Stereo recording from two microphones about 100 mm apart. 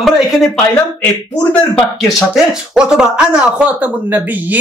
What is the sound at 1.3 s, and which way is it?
Speech, 20° left (ahead or behind).